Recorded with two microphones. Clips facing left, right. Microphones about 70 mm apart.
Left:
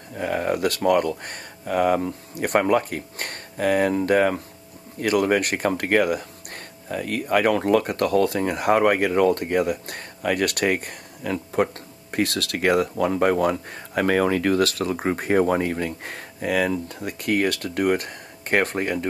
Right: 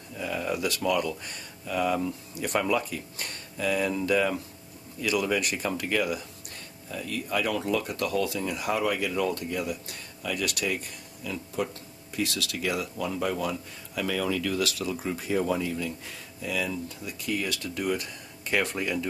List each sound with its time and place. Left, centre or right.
0.1 s speech: left